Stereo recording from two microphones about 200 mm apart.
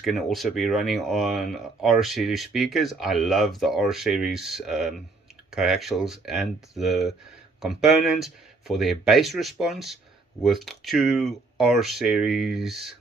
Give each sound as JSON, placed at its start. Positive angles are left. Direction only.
{"t": 0.0, "sound": "speech", "side_deg": 0}